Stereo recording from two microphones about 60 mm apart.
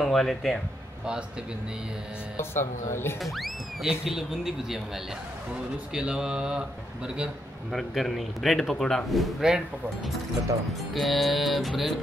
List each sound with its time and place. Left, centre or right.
0.0 s speech: centre
2.5 s speech: left
3.2 s a man's voice: centre
5.9 s speech: centre
7.7 s a man's voice: centre
10.9 s a man's voice: centre